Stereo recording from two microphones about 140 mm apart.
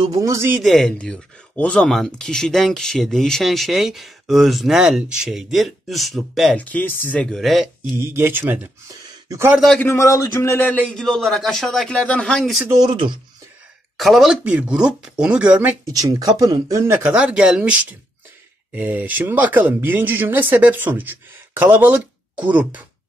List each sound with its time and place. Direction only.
0.0 s speech: 25° right (ahead or behind)
0.6 s speech: centre (ahead or behind)
6.6 s speech: 10° left (ahead or behind)
7.9 s speech: 15° right (ahead or behind)
9.6 s speech: 5° left (ahead or behind)
9.8 s speech: 20° left (ahead or behind); by 12.6 s centre (ahead or behind)
12.6 s speech: 25° right (ahead or behind)
13.9 s speech: centre (ahead or behind)
15.9 s speech: 25° right (ahead or behind)